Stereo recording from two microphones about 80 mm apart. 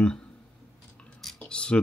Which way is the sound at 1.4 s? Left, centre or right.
Centre.